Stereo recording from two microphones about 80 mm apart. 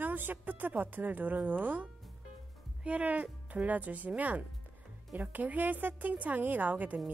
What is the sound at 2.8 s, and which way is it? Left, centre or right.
Speech, centre.